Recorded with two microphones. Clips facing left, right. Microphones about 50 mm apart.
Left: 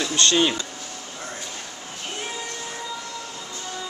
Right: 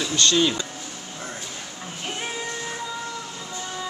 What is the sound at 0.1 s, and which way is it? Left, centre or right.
Speech, left.